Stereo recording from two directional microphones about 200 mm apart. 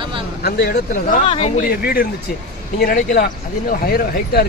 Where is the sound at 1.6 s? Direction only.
45° left (ahead or behind).